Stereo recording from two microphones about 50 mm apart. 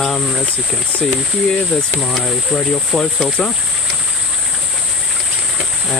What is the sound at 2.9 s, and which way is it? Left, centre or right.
Speech, centre.